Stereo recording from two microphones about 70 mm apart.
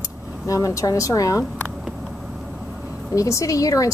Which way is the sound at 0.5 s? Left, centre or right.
Left.